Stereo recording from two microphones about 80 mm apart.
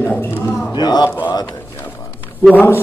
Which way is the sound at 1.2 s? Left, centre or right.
Left.